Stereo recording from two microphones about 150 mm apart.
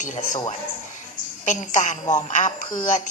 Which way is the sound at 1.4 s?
55° left (ahead or behind).